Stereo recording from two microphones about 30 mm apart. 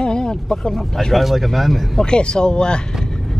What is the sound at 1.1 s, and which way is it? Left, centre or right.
Speech, centre.